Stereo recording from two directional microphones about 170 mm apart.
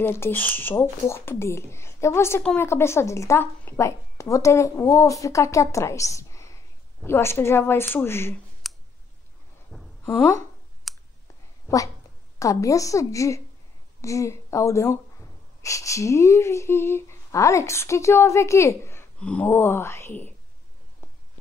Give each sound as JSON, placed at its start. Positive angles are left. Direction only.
{"t": 0.0, "sound": "speech", "side_deg": 15}
{"t": 8.6, "sound": "clicking", "side_deg": 0}
{"t": 9.7, "sound": "a sound", "side_deg": 0}
{"t": 10.0, "sound": "speech", "side_deg": 15}
{"t": 10.9, "sound": "clicking", "side_deg": 0}
{"t": 11.6, "sound": "a sound", "side_deg": 20}
{"t": 12.4, "sound": "a woman's voice", "side_deg": 20}